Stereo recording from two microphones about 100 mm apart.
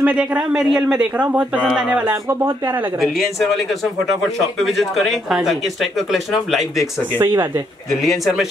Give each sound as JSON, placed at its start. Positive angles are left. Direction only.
{"t": 0.0, "sound": "a man's voice", "side_deg": -15}
{"t": 2.2, "sound": "speech", "side_deg": -25}
{"t": 3.0, "sound": "speech", "side_deg": 0}
{"t": 7.2, "sound": "speech", "side_deg": -30}
{"t": 7.9, "sound": "speech", "side_deg": 0}